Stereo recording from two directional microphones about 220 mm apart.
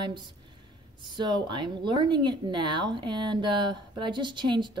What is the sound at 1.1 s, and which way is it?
Speech, 20° right (ahead or behind).